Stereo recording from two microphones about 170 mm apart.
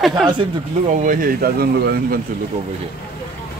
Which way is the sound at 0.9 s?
50° right (ahead or behind).